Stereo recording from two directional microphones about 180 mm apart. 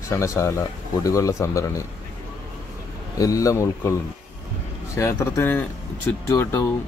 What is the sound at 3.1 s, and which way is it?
Speech, 20° left (ahead or behind).